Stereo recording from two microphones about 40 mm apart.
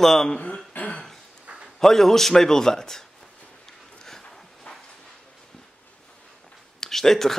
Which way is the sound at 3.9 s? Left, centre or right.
Centre.